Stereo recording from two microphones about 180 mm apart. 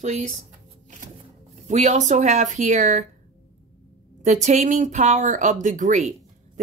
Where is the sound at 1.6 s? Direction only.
40° right (ahead or behind).